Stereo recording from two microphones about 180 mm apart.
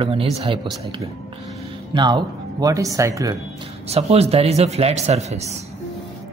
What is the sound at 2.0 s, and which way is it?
Speech, 25° right (ahead or behind).